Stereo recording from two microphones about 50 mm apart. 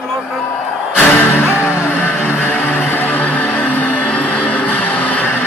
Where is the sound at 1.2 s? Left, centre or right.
Left.